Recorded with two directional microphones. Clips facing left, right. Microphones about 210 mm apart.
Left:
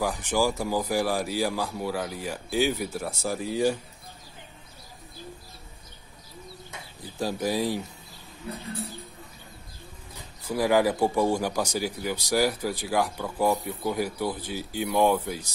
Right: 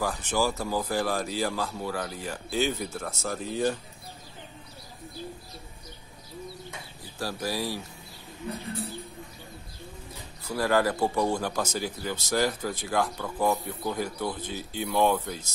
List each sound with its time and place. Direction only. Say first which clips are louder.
0.0 s speech: left 2 dB; 15° left (ahead or behind)
7.2 s speech: left 4 dB; 20° left (ahead or behind)
10.4 s speech: left 3 dB; 15° left (ahead or behind)